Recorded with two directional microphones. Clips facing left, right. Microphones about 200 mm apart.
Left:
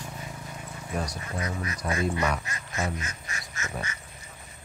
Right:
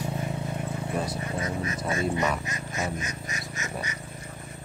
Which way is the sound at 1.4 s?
25° right (ahead or behind).